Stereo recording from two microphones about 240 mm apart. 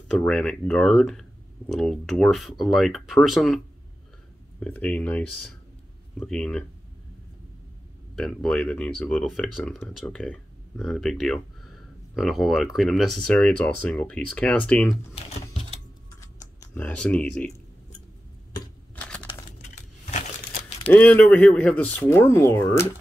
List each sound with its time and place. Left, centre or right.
0.2 s speech: centre
8.2 s speech: centre
15.1 s typing: left
16.2 s computer keyboard: centre
18.9 s a sound: centre
19.2 s a sound: left
20.9 s speech: centre